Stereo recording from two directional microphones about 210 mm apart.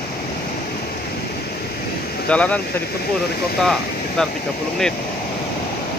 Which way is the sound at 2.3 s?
5° left (ahead or behind).